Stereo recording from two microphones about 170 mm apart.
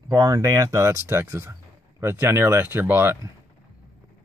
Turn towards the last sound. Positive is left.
turn(degrees=-10)  # may be behind; listen again after turning